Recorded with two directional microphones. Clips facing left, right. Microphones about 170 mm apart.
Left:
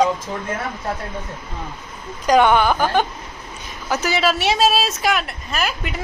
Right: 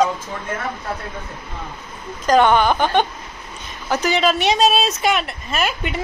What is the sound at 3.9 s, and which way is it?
Speech, 5° left (ahead or behind).